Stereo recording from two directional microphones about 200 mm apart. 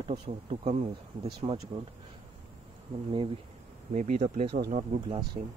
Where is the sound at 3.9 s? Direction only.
40° right (ahead or behind).